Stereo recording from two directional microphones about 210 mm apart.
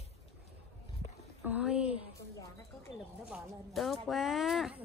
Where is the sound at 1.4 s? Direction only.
5° right (ahead or behind).